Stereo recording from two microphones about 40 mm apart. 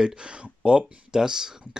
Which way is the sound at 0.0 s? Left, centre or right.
Right.